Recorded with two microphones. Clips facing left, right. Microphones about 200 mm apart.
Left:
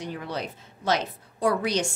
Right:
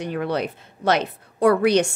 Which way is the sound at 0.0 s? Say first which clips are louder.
Right 8 dB; 65° right (ahead or behind).